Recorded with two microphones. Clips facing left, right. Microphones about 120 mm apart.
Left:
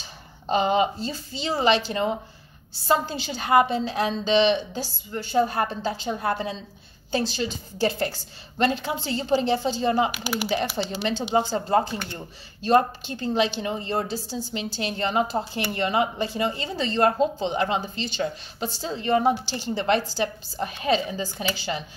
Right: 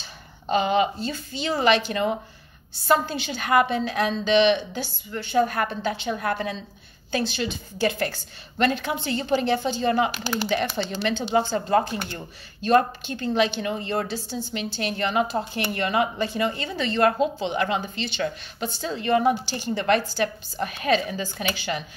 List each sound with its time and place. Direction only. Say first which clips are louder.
0.5 s a woman's voice: even; 35° left (ahead or behind)
10.1 s speech: right 1 dB; 10° left (ahead or behind)
11.5 s a woman's voice: right 1 dB; 30° left (ahead or behind)
13.0 s a woman's voice: right 1 dB; 30° left (ahead or behind)